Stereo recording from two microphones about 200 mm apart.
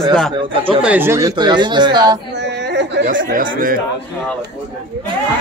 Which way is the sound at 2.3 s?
60° right (ahead or behind).